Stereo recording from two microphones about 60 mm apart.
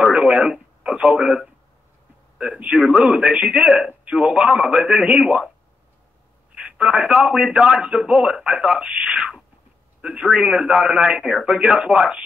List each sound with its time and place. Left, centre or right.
0.0 s radio: centre
2.3 s a man's voice: centre
6.6 s a man's voice: centre